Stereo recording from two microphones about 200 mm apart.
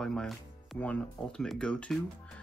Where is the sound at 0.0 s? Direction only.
5° left (ahead or behind).